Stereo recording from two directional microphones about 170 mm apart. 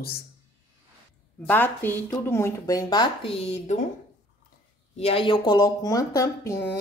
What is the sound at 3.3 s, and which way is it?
Speech, 40° left (ahead or behind).